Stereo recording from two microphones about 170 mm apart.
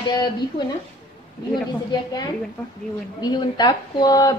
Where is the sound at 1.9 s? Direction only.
25° left (ahead or behind).